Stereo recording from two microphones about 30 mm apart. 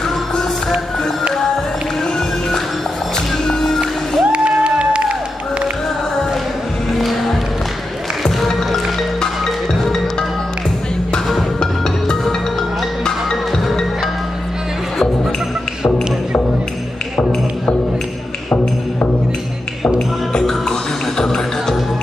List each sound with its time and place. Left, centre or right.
3.6 s music: centre
4.3 s a sound: right
6.9 s music: centre
11.6 s music: left
21.2 s music: centre